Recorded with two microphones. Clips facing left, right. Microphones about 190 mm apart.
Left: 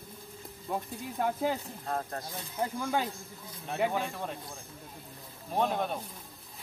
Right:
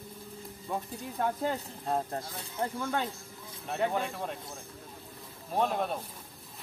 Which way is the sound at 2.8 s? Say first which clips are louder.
Left 1 dB; 10° left (ahead or behind).